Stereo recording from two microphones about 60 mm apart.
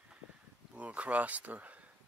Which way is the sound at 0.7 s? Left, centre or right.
Right.